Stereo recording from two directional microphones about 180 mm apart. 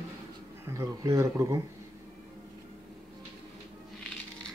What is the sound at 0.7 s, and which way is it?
Speech, 15° right (ahead or behind).